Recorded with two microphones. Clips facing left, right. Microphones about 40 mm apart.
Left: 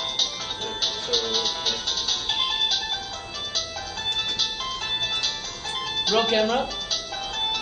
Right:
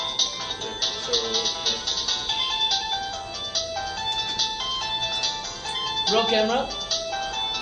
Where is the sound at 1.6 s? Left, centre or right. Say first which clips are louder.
Even; left.